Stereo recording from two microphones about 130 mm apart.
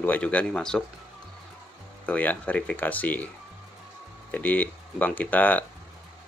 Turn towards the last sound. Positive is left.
turn(degrees=10)  # may be behind; listen again after turning